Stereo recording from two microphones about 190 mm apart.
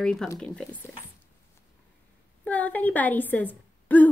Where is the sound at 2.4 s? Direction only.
10° left (ahead or behind).